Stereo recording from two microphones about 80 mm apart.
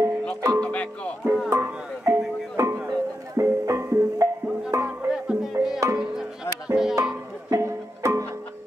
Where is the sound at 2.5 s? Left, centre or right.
Right.